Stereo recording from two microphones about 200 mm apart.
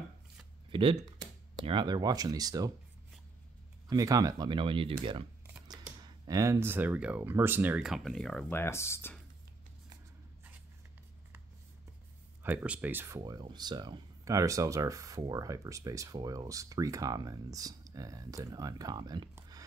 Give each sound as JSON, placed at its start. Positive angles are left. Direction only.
{"t": 0.7, "sound": "speech", "side_deg": -25}
{"t": 3.9, "sound": "speech", "side_deg": -15}
{"t": 12.4, "sound": "speech", "side_deg": -10}
{"t": 13.2, "sound": "speech", "side_deg": -20}